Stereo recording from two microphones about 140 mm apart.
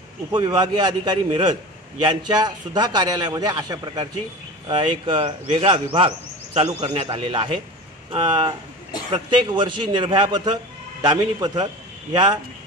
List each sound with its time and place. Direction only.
0.3 s a man's voice: 30° right (ahead or behind)